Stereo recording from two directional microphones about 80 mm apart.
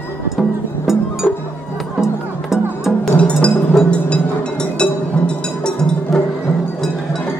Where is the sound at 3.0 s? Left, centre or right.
Centre.